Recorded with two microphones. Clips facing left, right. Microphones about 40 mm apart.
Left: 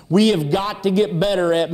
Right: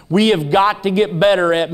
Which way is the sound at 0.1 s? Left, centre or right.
Right.